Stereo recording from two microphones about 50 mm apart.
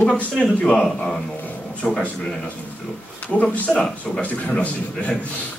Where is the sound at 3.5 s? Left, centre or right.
Left.